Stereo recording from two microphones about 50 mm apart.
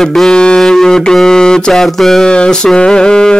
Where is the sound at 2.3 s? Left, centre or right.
Centre.